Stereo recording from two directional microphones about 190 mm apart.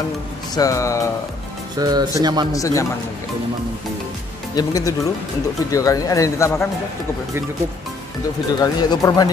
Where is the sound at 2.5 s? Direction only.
15° left (ahead or behind).